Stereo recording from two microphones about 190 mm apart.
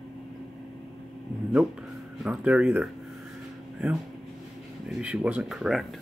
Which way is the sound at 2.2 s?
5° right (ahead or behind).